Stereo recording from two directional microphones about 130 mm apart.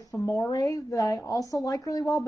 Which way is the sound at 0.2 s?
25° left (ahead or behind).